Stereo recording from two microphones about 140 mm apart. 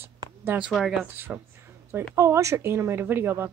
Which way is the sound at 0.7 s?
Centre (ahead or behind).